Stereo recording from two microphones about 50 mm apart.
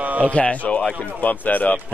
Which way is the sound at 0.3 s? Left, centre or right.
Left.